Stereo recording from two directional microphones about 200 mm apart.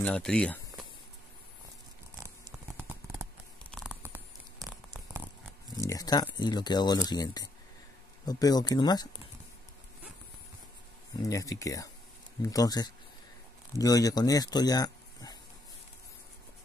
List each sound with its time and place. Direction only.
0.0 s speech: 5° left (ahead or behind)
2.2 s patter: 15° right (ahead or behind)
3.7 s tearing: 5° right (ahead or behind)
4.6 s a sound: 5° right (ahead or behind)
5.8 s a sound: 15° left (ahead or behind)
6.3 s speech: 20° left (ahead or behind)
11.2 s speech: 15° left (ahead or behind)